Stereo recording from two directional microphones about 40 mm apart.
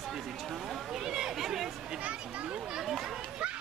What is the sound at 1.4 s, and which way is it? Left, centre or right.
Chatter, centre.